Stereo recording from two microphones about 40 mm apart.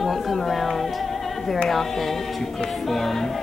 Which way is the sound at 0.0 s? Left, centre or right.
Centre.